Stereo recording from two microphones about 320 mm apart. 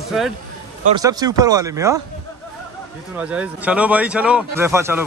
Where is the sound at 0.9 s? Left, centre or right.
Centre.